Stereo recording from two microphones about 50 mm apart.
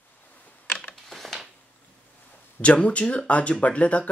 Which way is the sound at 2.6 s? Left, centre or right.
Left.